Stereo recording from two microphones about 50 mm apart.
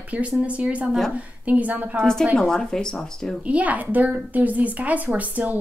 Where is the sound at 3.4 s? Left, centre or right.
Right.